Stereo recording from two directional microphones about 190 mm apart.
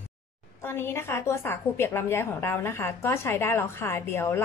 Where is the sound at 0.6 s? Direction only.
10° left (ahead or behind).